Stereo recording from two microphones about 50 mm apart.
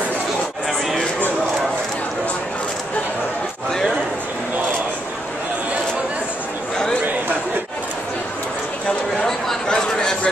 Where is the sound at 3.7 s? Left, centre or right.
Centre.